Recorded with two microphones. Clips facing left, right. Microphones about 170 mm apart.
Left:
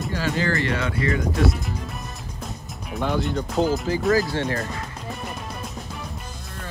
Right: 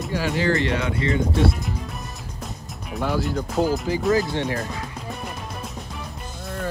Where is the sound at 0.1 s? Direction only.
15° right (ahead or behind).